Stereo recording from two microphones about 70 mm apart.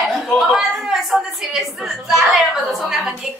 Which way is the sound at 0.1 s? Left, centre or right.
Centre.